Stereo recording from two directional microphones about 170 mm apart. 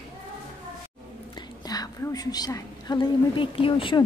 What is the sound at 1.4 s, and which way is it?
A woman's voice, 25° left (ahead or behind).